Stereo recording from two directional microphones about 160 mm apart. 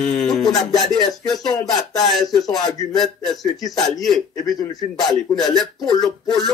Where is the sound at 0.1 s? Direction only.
Centre (ahead or behind).